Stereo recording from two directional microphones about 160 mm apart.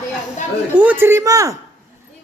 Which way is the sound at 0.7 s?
10° right (ahead or behind).